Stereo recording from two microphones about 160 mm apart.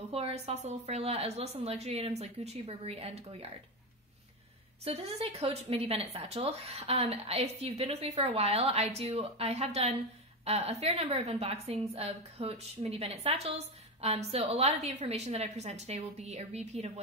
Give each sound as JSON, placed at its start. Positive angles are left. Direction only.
{"t": 0.1, "sound": "speech", "side_deg": -40}
{"t": 4.8, "sound": "a woman's voice", "side_deg": -40}